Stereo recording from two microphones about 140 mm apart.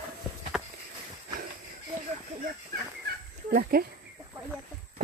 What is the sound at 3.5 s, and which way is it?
Speech, 90° right.